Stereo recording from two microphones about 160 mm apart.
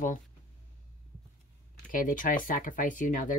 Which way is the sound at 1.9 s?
55° left (ahead or behind).